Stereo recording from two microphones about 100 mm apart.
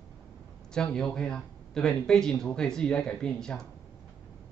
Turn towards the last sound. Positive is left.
turn(degrees=5)  # may be behind; listen again after turning